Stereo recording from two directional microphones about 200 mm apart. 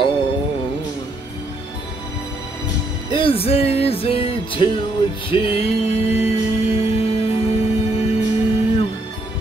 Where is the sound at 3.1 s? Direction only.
25° left (ahead or behind).